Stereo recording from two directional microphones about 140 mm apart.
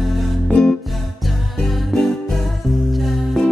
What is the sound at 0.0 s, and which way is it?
Music, centre (ahead or behind).